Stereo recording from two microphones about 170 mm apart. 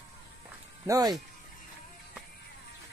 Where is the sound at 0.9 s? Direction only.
20° right (ahead or behind).